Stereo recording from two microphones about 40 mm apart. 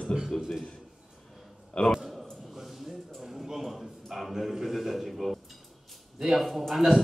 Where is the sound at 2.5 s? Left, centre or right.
Centre.